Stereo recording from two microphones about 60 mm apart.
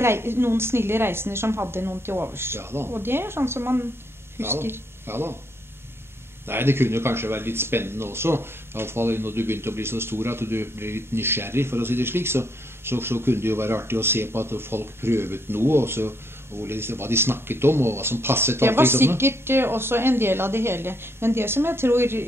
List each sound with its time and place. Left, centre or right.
0.0 s speech: right
6.4 s speech: right